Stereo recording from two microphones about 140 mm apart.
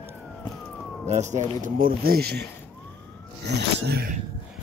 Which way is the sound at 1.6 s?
90° right.